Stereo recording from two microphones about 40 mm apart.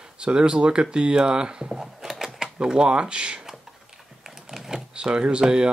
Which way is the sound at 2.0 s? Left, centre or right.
Centre.